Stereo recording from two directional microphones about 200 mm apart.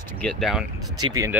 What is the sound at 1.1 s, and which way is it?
Speech, 15° right (ahead or behind).